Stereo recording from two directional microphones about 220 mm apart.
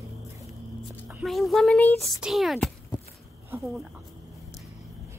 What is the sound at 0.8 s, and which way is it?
Speech, 5° right (ahead or behind).